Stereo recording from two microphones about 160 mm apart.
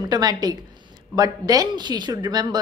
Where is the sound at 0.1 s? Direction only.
25° right (ahead or behind).